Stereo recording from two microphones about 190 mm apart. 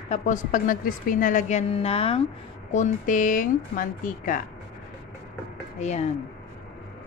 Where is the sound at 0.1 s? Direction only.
40° left (ahead or behind).